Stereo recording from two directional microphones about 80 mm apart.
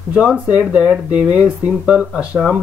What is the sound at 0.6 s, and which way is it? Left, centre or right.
Speech, centre.